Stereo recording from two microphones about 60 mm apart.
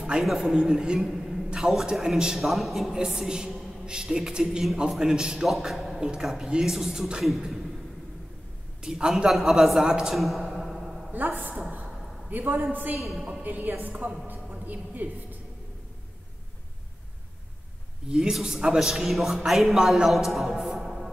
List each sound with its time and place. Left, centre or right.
0.0 s a man's voice: centre
8.8 s a man's voice: centre
11.1 s a man's voice: right
14.2 s a sound: right
18.0 s a man's voice: centre
20.2 s music: centre